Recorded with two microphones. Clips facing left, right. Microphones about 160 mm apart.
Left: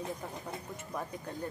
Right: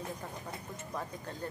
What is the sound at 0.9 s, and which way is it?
Speech, 5° left (ahead or behind).